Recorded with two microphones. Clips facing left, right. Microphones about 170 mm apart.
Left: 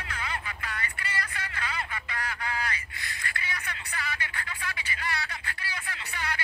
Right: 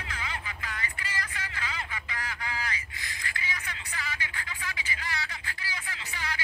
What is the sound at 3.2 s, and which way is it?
Music, 60° left (ahead or behind).